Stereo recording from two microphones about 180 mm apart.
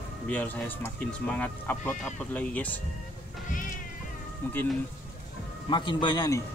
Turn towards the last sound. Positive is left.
turn(degrees=20)  # may be behind; listen again after turning